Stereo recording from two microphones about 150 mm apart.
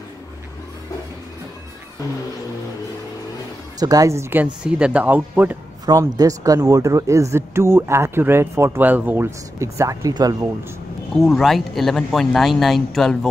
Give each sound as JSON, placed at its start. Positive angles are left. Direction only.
{"t": 3.8, "sound": "speech", "side_deg": -25}
{"t": 5.9, "sound": "speech", "side_deg": -25}
{"t": 11.1, "sound": "speech", "side_deg": 0}